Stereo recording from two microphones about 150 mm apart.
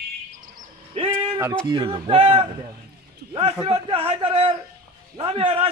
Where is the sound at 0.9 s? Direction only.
40° right (ahead or behind).